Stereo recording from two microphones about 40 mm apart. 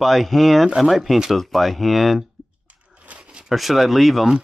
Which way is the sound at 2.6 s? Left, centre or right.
Right.